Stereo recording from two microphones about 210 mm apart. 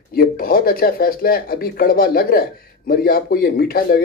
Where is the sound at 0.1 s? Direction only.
45° left (ahead or behind).